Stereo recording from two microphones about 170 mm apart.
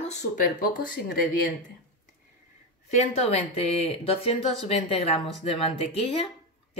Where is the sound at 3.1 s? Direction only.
35° left (ahead or behind).